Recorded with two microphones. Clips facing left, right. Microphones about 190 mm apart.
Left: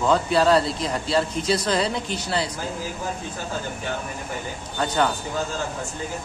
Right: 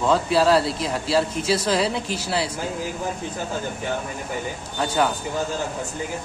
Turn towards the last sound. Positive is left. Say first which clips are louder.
# right 1 dB
turn(degrees=-5)  # may be behind; listen again after turning